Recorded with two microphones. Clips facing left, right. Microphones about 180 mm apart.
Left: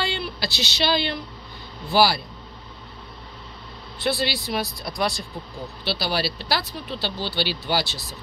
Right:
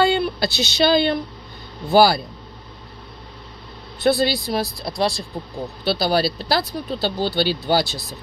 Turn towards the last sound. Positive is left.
turn(degrees=-45)  # may be behind; listen again after turning